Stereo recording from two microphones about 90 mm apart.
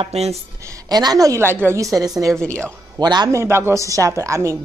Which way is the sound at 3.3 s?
25° right (ahead or behind).